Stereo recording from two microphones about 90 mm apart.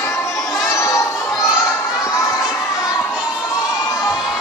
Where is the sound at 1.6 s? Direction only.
35° left (ahead or behind).